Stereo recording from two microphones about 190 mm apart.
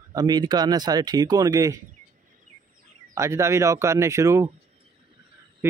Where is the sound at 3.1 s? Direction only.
15° right (ahead or behind).